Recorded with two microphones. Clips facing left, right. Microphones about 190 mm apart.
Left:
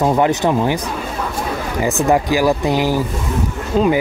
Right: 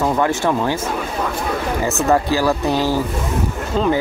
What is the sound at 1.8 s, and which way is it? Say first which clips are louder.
Speech: left 2 dB; 15° left (ahead or behind).